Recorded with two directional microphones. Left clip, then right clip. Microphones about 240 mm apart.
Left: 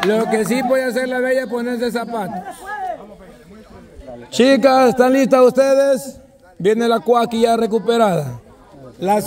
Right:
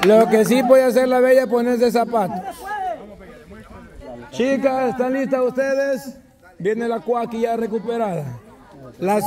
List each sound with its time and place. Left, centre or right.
0.0 s speech: centre
4.3 s a man's voice: left; by 6.0 s centre
6.6 s a man's voice: left